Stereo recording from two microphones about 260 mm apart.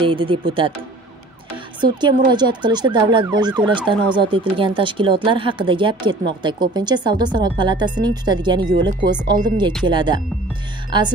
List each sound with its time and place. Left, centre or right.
0.0 s a woman's voice: centre
1.8 s a woman's voice: centre